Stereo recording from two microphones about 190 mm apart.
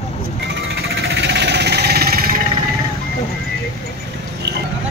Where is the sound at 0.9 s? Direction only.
65° right (ahead or behind).